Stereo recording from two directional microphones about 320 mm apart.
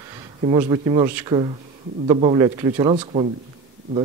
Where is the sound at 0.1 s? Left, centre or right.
Centre.